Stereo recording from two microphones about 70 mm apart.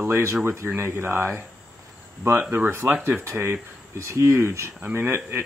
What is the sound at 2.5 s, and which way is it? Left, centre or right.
Speech, right.